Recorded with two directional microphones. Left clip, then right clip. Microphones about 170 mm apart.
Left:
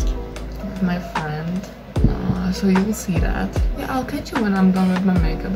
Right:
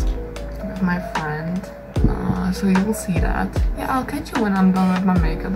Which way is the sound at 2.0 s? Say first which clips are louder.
Even; centre (ahead or behind).